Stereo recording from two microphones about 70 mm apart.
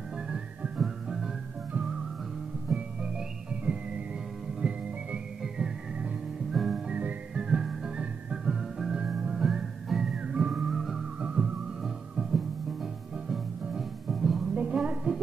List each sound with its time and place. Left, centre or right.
0.7 s whistling: centre
2.7 s music: centre
4.6 s whistling: centre
6.5 s whistling: centre
6.9 s whistling: right
7.3 s music: centre
11.1 s music: centre
11.8 s music: centre
14.5 s music: centre